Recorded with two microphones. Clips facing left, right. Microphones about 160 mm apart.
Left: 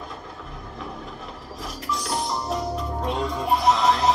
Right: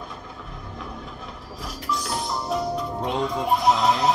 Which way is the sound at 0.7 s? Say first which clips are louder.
Left 1 dB; centre (ahead or behind).